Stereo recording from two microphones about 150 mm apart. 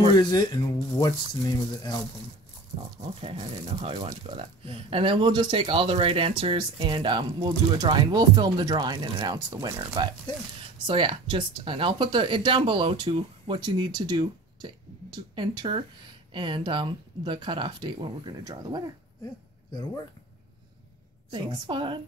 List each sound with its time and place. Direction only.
0.2 s speech: 25° left (ahead or behind)
3.2 s speech: 40° right (ahead or behind)
21.3 s speech: 30° right (ahead or behind)